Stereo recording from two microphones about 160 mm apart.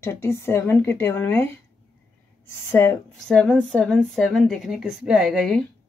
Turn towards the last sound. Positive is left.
turn(degrees=0)  # may be behind; listen again after turning